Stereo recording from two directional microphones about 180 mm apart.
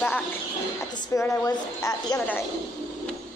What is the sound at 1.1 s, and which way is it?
A woman's voice, 15° left (ahead or behind).